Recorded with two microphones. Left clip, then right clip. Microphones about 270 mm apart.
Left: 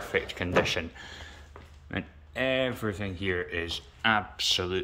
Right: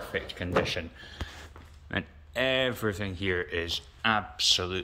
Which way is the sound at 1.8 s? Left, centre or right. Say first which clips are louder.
Right 3 dB; centre.